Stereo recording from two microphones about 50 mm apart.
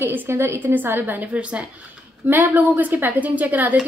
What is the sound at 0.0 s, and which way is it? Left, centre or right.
Speech, right.